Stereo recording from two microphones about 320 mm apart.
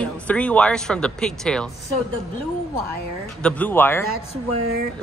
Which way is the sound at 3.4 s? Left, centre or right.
Centre.